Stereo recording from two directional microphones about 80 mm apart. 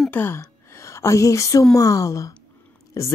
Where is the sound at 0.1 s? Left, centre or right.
Left.